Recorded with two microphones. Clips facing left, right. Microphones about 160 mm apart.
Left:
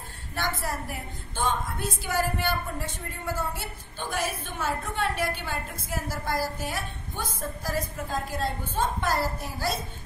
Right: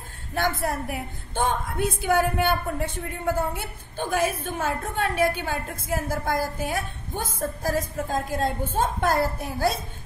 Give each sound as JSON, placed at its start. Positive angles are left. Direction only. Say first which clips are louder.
{"t": 0.3, "sound": "a woman's voice", "louder": "right 5 dB", "side_deg": -55}